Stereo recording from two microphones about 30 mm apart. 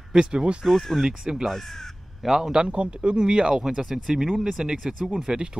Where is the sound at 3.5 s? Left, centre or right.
Centre.